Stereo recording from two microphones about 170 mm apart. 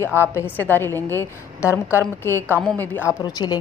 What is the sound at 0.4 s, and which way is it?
A woman's voice, 10° left (ahead or behind).